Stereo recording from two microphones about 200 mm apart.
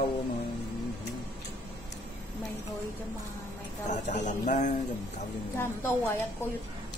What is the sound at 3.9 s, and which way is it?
Speech, 40° left (ahead or behind).